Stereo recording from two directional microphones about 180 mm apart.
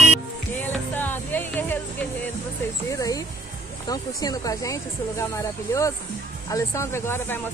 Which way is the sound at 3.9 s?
20° left (ahead or behind).